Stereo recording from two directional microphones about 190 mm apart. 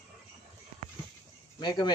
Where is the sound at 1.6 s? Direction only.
25° left (ahead or behind).